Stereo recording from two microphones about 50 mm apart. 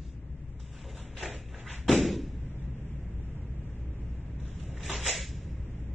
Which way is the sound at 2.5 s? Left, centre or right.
Left.